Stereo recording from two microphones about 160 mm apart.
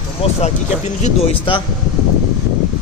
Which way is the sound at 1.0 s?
35° left (ahead or behind).